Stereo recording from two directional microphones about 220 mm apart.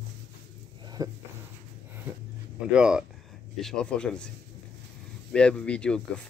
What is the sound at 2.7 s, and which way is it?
Speech, 5° right (ahead or behind).